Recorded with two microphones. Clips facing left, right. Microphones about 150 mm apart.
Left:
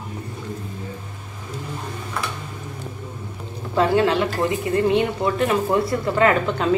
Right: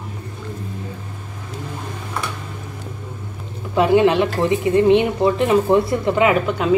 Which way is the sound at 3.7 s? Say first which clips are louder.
Right 4 dB; 15° right (ahead or behind).